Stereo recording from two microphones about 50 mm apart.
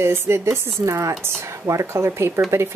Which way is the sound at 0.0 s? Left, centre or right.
Right.